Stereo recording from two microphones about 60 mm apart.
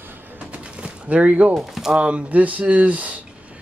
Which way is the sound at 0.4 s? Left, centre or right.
Right.